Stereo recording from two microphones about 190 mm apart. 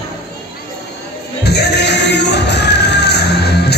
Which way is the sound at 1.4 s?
60° left (ahead or behind).